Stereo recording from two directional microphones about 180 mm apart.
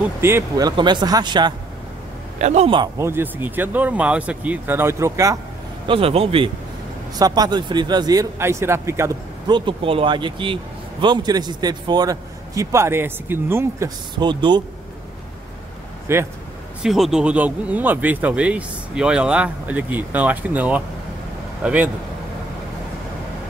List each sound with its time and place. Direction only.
0.0 s speech: 15° right (ahead or behind)
2.3 s a man's voice: 40° right (ahead or behind)
3.0 s speech: 10° right (ahead or behind)
5.9 s a man's voice: 30° right (ahead or behind)
7.2 s speech: 20° right (ahead or behind)
9.7 s speech: 30° right (ahead or behind)
16.1 s speech: 15° right (ahead or behind)
16.8 s speech: centre (ahead or behind)